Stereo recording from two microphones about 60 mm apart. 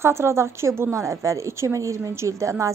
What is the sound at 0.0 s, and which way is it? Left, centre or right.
A woman's voice, right.